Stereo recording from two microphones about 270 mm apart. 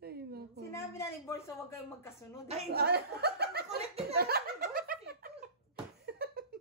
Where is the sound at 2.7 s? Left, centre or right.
Right.